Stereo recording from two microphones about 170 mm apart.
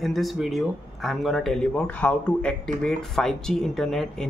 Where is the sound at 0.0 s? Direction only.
Centre (ahead or behind).